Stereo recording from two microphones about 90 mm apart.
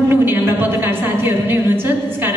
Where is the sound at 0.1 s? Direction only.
25° right (ahead or behind).